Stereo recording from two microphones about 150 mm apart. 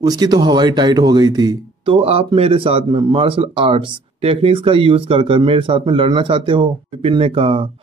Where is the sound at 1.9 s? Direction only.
40° right (ahead or behind).